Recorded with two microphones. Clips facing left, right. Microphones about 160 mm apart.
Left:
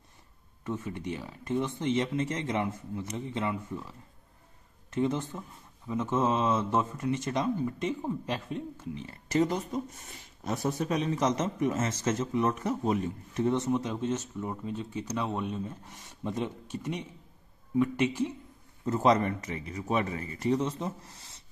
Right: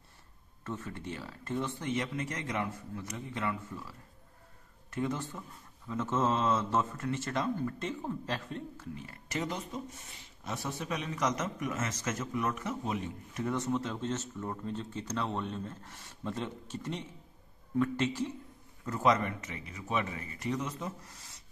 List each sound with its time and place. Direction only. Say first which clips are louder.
0.7 s speech: left 5 dB; 15° left (ahead or behind)
4.9 s speech: left 5 dB; 20° left (ahead or behind)
9.3 s a man's voice: left 9 dB; 35° left (ahead or behind)
13.4 s speech: left 5 dB; 20° left (ahead or behind)
18.9 s a man's voice: left 4 dB; 30° left (ahead or behind)